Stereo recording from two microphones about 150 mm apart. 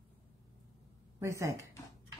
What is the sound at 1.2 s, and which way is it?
Speech, 20° right (ahead or behind).